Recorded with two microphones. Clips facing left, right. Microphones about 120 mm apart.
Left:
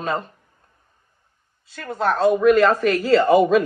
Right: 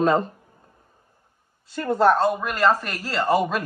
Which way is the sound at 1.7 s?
Centre (ahead or behind).